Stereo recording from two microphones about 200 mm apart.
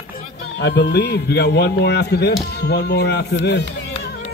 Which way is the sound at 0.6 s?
55° left (ahead or behind).